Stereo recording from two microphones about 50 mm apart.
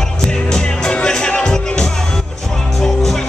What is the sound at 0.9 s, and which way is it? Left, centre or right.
Music, centre.